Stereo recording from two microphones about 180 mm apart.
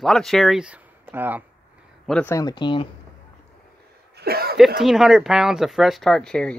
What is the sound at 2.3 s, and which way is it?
Speech, 25° left (ahead or behind).